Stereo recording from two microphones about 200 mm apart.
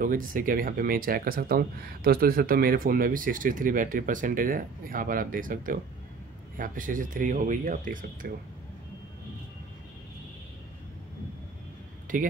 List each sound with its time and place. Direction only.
0.0 s speech: 45° right (ahead or behind)
12.1 s speech: 40° right (ahead or behind)